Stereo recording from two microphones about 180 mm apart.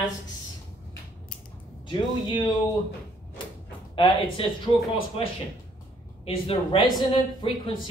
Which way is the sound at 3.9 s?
30° left (ahead or behind).